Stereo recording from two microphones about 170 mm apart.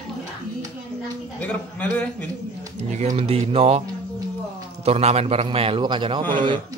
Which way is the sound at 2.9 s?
40° right (ahead or behind).